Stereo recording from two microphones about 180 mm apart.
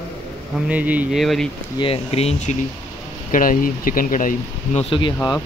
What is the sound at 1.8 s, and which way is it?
Speech, 35° left (ahead or behind).